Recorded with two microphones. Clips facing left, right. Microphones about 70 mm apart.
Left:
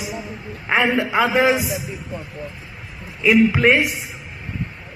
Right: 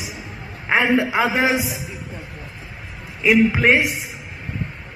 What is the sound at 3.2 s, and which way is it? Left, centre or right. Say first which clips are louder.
Music: left 1 dB; right.